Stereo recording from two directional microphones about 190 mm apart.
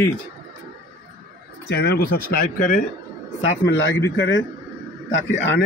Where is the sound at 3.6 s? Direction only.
65° left (ahead or behind).